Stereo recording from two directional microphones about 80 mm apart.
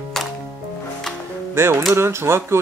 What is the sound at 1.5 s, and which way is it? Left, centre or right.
Speech, right.